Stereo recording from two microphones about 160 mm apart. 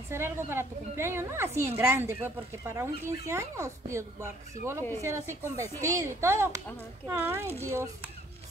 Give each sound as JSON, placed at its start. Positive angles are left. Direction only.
{"t": 0.1, "sound": "speech", "side_deg": -15}